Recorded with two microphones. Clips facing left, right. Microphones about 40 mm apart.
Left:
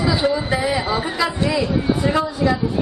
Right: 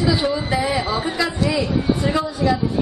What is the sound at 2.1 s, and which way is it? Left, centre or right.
Speech, centre.